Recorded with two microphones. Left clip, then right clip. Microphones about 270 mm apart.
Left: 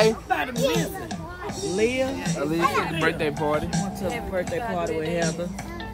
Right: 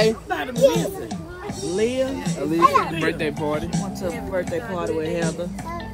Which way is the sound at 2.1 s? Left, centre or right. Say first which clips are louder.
Even; left.